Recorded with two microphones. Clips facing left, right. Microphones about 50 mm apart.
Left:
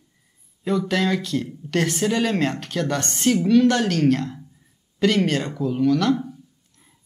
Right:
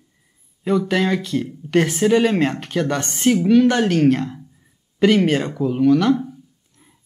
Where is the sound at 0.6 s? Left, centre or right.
Centre.